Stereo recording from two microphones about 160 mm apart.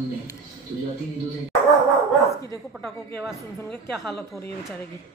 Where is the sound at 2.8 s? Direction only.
Centre (ahead or behind).